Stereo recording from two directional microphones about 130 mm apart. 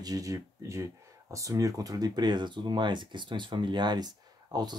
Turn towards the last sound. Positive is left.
turn(degrees=-30)  # may be behind; listen again after turning